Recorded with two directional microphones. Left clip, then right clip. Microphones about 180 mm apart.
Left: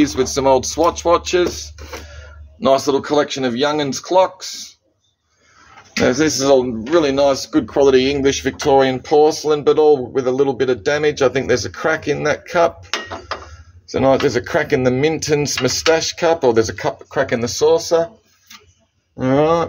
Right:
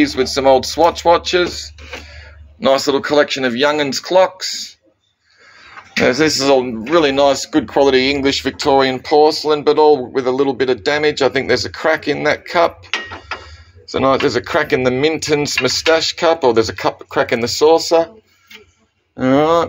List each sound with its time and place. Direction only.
0.0 s speech: 25° left (ahead or behind)
5.9 s speech: 15° left (ahead or behind)
13.9 s speech: 25° left (ahead or behind)
17.1 s speech: 5° right (ahead or behind)
19.1 s speech: 10° left (ahead or behind)